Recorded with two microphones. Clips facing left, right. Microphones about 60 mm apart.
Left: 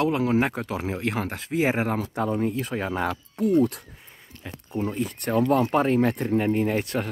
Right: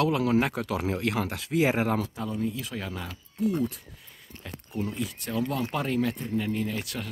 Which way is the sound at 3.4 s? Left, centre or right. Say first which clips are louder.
Left 3 dB; left.